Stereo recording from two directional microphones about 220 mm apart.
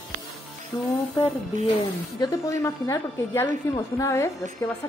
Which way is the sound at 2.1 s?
15° left (ahead or behind).